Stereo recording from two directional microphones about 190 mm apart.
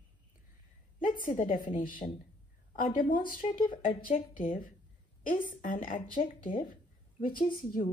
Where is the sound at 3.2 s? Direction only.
25° left (ahead or behind).